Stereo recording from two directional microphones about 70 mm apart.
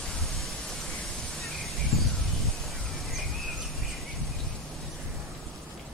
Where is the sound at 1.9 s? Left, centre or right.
Centre.